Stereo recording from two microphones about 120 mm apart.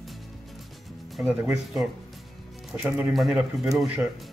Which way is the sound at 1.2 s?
20° right (ahead or behind).